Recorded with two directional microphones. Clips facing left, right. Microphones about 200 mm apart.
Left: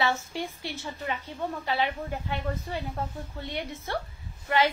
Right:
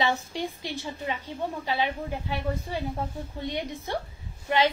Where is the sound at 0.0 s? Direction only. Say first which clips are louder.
Right 1 dB; 15° right (ahead or behind).